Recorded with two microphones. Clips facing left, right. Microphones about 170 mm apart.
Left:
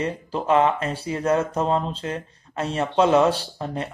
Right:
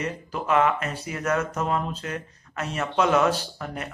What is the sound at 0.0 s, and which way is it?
Speech, 30° left (ahead or behind).